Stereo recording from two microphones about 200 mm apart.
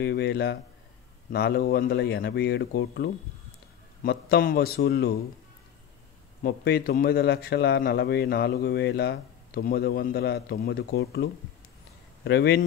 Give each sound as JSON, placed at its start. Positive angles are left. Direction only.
{"t": 0.0, "sound": "a man's voice", "side_deg": 55}
{"t": 6.4, "sound": "a man's voice", "side_deg": 50}
{"t": 12.3, "sound": "speech", "side_deg": 55}